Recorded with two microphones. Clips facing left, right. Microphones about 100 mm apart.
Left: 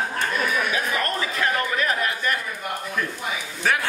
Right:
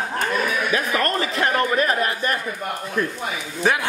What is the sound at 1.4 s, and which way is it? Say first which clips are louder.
Speech: right 4 dB; 35° right (ahead or behind).